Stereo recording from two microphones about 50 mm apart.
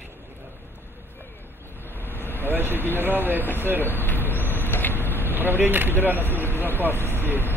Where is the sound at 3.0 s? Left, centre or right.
Right.